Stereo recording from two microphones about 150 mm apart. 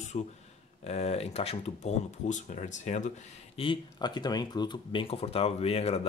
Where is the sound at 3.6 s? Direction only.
30° left (ahead or behind).